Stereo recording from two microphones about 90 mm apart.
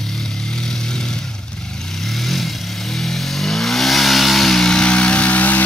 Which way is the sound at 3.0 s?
5° left (ahead or behind).